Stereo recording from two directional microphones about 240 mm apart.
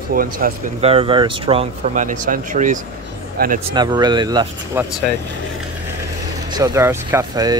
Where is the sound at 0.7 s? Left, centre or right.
Right.